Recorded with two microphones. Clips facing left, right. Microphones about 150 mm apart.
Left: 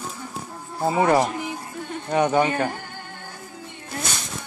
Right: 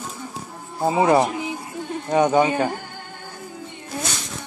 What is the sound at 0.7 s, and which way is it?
Speech, 15° right (ahead or behind).